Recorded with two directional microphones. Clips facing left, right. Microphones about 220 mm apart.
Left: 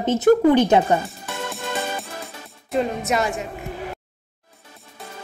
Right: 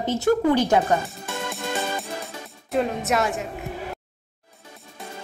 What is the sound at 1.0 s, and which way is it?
Music, centre (ahead or behind).